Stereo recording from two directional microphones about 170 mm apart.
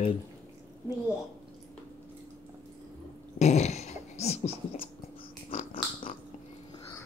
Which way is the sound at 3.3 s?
40° left (ahead or behind).